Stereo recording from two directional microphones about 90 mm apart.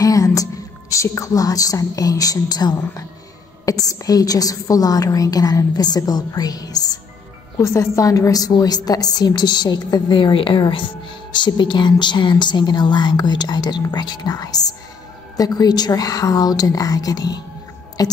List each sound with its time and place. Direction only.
0.0 s a woman's voice: 40° left (ahead or behind)
7.6 s a woman's voice: 35° left (ahead or behind)
10.1 s a woman's voice: 70° left (ahead or behind); by 17.3 s 45° left (ahead or behind)